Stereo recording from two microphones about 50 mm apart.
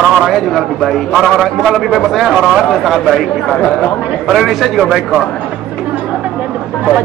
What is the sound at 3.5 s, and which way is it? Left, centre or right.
Speech, centre.